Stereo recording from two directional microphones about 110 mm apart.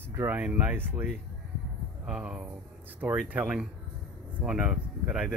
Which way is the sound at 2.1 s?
5° right (ahead or behind).